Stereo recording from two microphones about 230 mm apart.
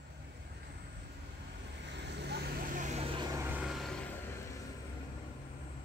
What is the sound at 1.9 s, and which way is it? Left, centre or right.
Vehicle, right.